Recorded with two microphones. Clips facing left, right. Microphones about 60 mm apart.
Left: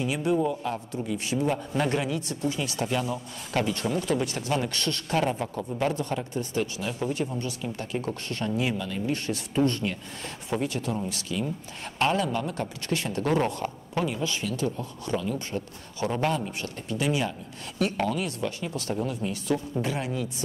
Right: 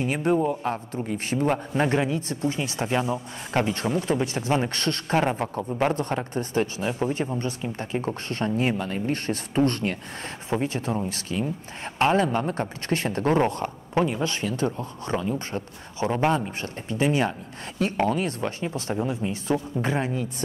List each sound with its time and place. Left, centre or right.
0.0 s speech: right
1.8 s speech: right
10.5 s speech: right